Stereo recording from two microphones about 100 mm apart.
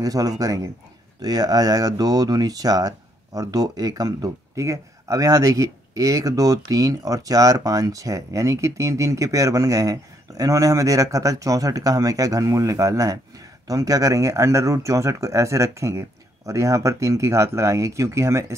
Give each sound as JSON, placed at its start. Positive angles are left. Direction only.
{"t": 0.0, "sound": "speech", "side_deg": -35}